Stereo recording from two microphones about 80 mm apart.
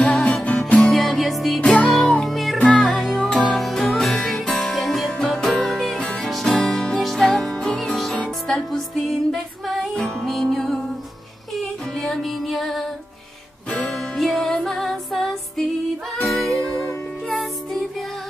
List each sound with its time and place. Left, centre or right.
0.0 s music: centre
0.7 s music: centre
1.6 s music: centre
2.2 s music: centre
2.6 s music: centre
12.0 s music: centre
13.7 s music: centre
14.1 s music: centre